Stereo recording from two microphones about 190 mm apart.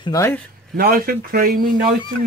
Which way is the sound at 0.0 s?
15° left (ahead or behind).